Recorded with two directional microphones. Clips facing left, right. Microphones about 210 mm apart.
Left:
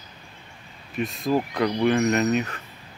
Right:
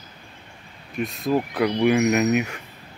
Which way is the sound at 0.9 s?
Centre (ahead or behind).